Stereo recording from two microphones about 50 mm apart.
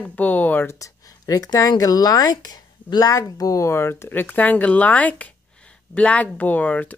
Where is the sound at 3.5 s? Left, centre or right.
Left.